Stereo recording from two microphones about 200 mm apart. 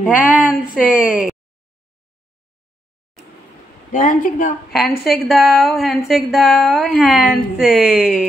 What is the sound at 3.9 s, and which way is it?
Speech, 40° left (ahead or behind).